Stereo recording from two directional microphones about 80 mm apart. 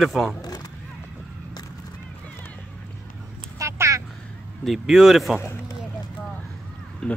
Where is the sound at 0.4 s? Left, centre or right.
Left.